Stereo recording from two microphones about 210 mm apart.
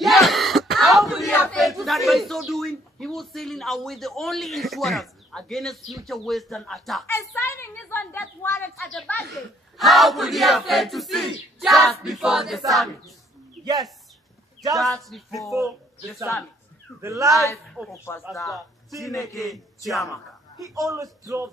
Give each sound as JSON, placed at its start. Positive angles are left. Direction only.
{"t": 0.0, "sound": "a sound", "side_deg": 0}
{"t": 7.1, "sound": "a woman's voice", "side_deg": 10}
{"t": 13.6, "sound": "a sound", "side_deg": 0}
{"t": 14.8, "sound": "a woman's voice", "side_deg": 0}
{"t": 17.0, "sound": "speech", "side_deg": -15}
{"t": 17.6, "sound": "a woman's voice", "side_deg": 0}
{"t": 20.5, "sound": "speech", "side_deg": -15}